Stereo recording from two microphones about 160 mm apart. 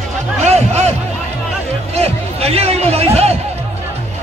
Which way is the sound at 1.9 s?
40° right (ahead or behind).